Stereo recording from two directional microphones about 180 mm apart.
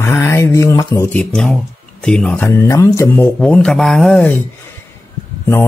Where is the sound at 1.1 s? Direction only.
5° left (ahead or behind).